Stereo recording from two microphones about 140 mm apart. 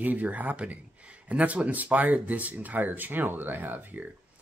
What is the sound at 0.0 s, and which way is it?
Speech, 10° right (ahead or behind).